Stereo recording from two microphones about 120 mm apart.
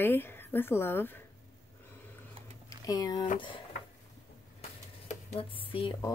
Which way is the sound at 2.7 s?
30° left (ahead or behind).